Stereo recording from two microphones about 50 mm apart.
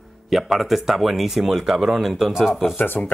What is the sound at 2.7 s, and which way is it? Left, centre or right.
Speech, left.